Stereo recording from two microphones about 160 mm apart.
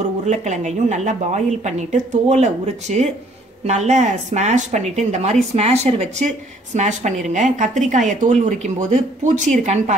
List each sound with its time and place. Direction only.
0.3 s a woman's voice: 45° right (ahead or behind)